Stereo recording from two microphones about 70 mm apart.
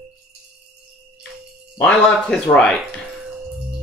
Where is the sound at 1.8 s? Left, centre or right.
Centre.